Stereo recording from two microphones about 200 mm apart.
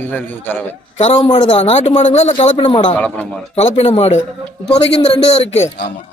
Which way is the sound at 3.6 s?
30° left (ahead or behind).